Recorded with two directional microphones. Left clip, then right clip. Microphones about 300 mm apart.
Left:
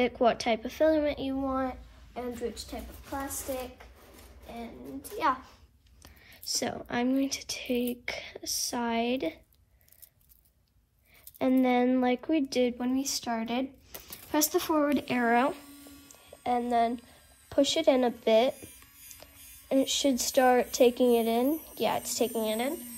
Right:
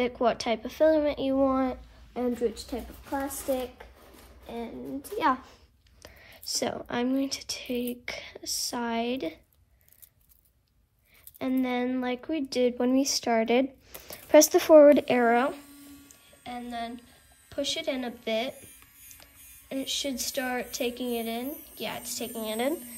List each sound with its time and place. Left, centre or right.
0.0 s speech: centre
2.7 s a woman's voice: right
5.2 s a woman's voice: right
6.0 s speech: centre
11.3 s speech: centre
16.1 s music: centre
17.5 s speech: centre